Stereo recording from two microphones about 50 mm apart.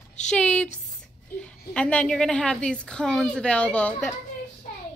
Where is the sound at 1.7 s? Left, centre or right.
Left.